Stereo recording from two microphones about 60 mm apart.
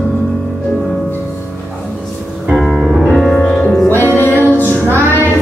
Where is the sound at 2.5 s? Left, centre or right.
Centre.